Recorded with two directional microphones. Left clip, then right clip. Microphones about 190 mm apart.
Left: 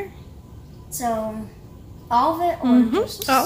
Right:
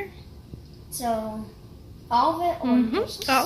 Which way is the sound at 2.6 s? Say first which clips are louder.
Left 5 dB; 25° left (ahead or behind).